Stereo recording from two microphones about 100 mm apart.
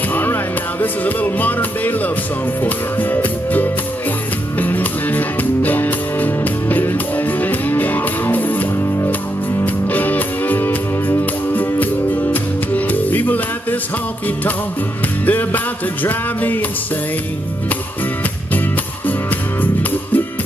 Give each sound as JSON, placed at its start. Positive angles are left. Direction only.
{"t": 0.1, "sound": "music", "side_deg": 20}
{"t": 15.2, "sound": "music", "side_deg": 15}
{"t": 19.6, "sound": "music", "side_deg": 20}